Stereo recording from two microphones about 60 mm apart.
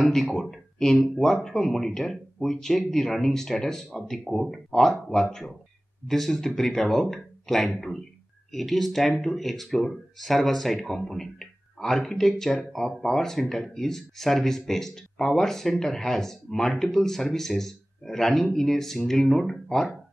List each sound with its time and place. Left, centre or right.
0.0 s speech: centre